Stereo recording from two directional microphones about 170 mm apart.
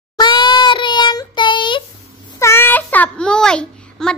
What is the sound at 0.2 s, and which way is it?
Child singing, 25° left (ahead or behind).